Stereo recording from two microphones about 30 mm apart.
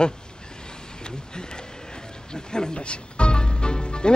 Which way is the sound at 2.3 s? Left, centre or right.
Left.